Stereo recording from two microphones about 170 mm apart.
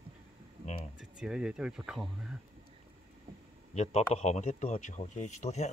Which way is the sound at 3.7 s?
40° left (ahead or behind).